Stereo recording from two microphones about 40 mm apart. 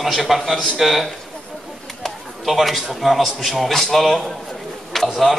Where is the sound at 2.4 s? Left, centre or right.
Centre.